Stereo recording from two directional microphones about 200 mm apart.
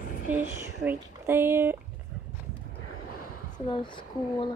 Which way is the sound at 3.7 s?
25° left (ahead or behind).